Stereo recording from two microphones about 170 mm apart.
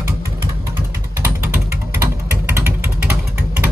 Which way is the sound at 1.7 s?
15° right (ahead or behind).